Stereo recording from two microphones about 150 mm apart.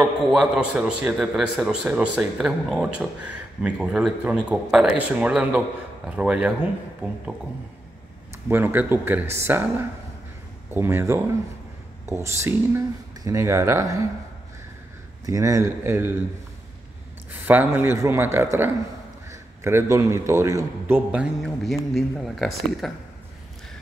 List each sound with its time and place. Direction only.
0.0 s a man's voice: 5° right (ahead or behind)
8.5 s a man's voice: 15° right (ahead or behind)
15.2 s speech: 20° right (ahead or behind)
17.3 s a man's voice: 10° right (ahead or behind)
20.8 s speech: 10° right (ahead or behind)